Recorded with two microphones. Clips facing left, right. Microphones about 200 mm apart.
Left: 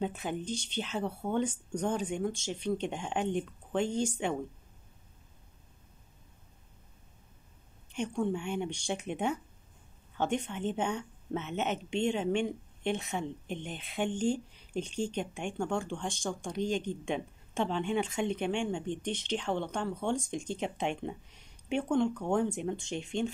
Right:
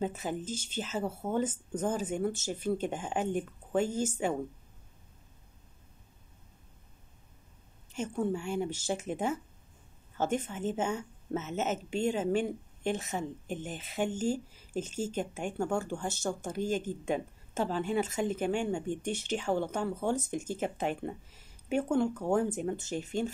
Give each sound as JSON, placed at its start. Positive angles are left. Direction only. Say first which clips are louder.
{"t": 0.0, "sound": "speech", "louder": "even", "side_deg": 0}
{"t": 7.9, "sound": "speech", "louder": "even", "side_deg": -5}